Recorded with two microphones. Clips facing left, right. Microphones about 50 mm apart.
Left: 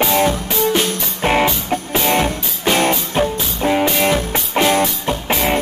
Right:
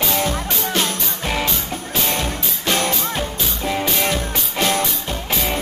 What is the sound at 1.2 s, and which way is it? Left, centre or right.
Music, left.